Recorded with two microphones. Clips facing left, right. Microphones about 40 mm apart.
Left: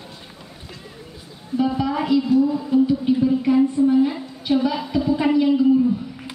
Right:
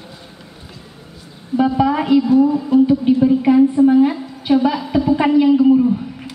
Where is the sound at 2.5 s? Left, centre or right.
Right.